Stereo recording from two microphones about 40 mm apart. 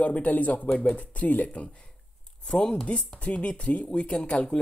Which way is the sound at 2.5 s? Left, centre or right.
Centre.